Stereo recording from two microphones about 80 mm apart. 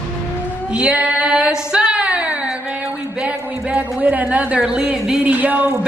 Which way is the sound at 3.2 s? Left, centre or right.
Centre.